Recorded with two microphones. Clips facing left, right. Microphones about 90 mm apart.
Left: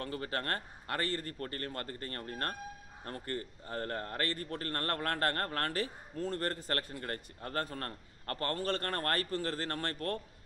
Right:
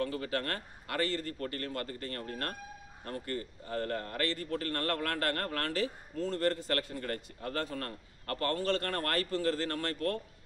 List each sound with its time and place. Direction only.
0.0 s a man's voice: 35° left (ahead or behind)